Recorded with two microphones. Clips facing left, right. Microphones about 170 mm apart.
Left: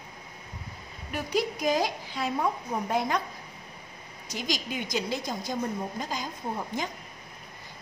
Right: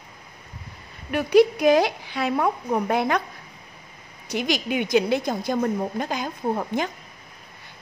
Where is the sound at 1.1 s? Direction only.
70° right (ahead or behind).